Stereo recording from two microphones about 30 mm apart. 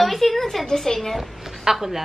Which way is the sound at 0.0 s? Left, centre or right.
Centre.